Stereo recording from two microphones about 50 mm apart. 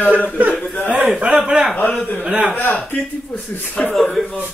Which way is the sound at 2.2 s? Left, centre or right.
Right.